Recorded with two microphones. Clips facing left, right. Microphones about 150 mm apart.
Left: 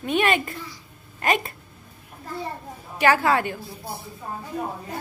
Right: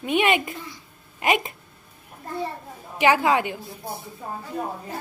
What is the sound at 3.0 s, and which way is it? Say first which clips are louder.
A woman's voice: even; 15° right (ahead or behind).